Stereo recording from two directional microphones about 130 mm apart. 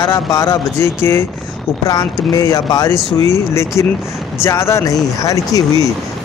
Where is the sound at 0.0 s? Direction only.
25° left (ahead or behind).